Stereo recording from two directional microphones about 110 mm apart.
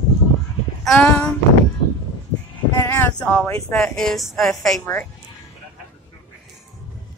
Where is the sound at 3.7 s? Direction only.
5° left (ahead or behind).